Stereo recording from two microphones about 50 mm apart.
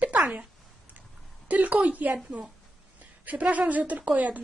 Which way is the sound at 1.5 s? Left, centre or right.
Right.